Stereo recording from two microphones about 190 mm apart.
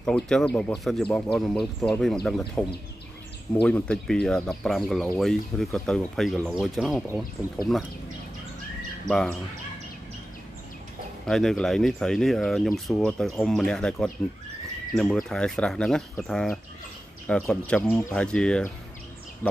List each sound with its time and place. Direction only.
0.0 s speech: 5° left (ahead or behind)
3.6 s speech: 5° left (ahead or behind)
9.0 s speech: centre (ahead or behind)
11.2 s speech: centre (ahead or behind)
19.4 s a sound: 5° left (ahead or behind)